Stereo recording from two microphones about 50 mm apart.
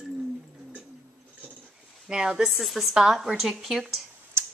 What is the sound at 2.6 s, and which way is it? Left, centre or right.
A woman's voice, centre.